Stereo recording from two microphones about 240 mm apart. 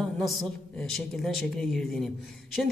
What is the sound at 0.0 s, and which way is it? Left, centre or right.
A man's voice, centre.